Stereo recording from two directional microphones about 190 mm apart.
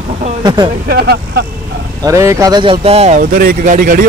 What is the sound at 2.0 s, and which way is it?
Speech, 15° right (ahead or behind).